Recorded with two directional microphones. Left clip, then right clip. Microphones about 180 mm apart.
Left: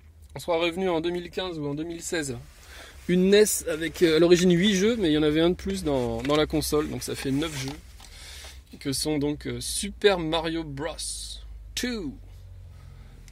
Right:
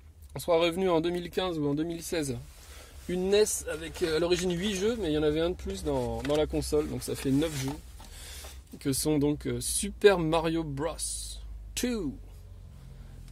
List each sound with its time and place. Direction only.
0.3 s speech: 10° right (ahead or behind)
1.3 s speech: 25° right (ahead or behind)
1.9 s speech: centre (ahead or behind)
3.2 s speech: 45° left (ahead or behind)
6.2 s speech: 35° left (ahead or behind)
6.9 s speech: 10° left (ahead or behind)
8.1 s speech: 15° right (ahead or behind)